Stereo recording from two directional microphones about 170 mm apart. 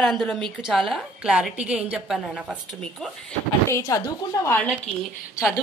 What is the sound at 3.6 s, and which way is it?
A woman's voice, 20° left (ahead or behind).